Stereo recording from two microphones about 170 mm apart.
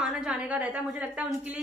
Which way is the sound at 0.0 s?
Centre (ahead or behind).